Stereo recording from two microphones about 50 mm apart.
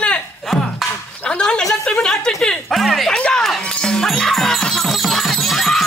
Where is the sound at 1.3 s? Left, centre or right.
Centre.